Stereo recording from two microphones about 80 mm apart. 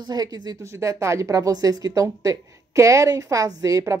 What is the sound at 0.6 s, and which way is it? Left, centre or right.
A woman's voice, right.